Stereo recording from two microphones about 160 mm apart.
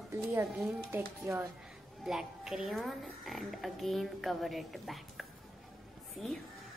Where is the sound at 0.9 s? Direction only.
15° right (ahead or behind).